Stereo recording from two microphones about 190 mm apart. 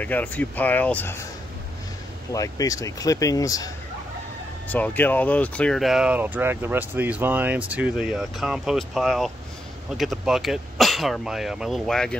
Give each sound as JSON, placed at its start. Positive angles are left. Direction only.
{"t": 0.0, "sound": "speech", "side_deg": 10}
{"t": 2.3, "sound": "speech", "side_deg": 20}